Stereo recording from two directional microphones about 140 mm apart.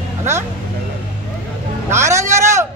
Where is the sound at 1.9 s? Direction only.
20° right (ahead or behind).